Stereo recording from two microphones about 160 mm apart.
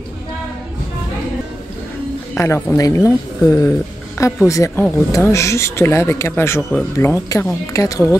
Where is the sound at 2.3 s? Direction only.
15° left (ahead or behind).